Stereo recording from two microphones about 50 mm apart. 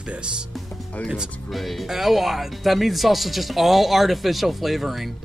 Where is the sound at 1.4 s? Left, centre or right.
Centre.